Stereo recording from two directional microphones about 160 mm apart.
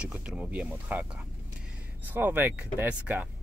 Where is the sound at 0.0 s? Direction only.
5° right (ahead or behind).